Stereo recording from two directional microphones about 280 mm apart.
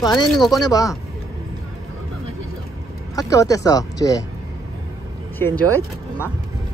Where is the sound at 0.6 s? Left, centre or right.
Centre.